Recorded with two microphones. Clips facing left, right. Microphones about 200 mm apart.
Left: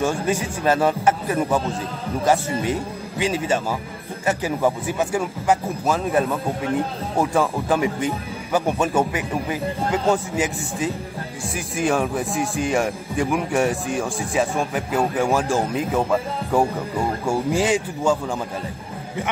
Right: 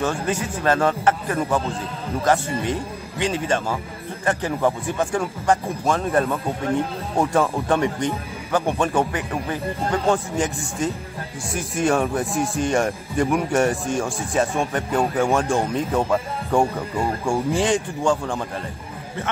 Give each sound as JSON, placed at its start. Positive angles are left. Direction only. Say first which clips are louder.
{"t": 0.0, "sound": "speech", "louder": "left 2 dB", "side_deg": 10}